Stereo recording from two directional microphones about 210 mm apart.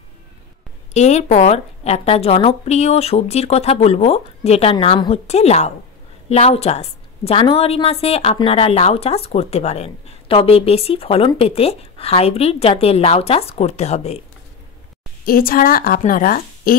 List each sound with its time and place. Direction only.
0.9 s a woman's voice: 30° left (ahead or behind)
15.2 s a woman's voice: 45° left (ahead or behind)